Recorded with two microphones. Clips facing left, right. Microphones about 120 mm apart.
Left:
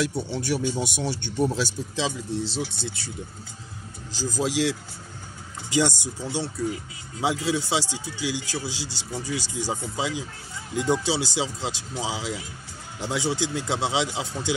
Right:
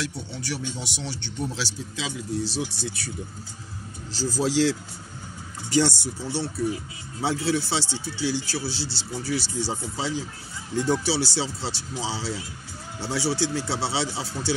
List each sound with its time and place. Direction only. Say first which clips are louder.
0.0 s speech: left 6 dB; 55° left (ahead or behind)
2.0 s speech: left 2 dB; 30° left (ahead or behind)
4.1 s a man's voice: right 1 dB; 15° left (ahead or behind)
5.7 s a man's voice: right 1 dB; 15° left (ahead or behind)